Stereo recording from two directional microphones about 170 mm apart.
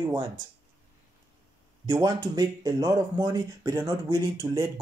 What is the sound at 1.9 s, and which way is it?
Speech, 20° right (ahead or behind).